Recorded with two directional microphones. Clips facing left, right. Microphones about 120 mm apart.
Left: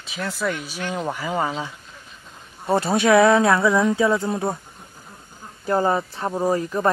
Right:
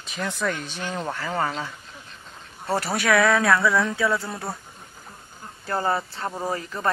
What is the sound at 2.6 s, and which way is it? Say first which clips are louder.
Speech: left 5 dB; 20° left (ahead or behind).